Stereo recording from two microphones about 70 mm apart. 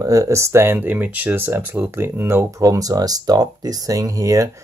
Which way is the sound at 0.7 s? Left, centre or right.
Right.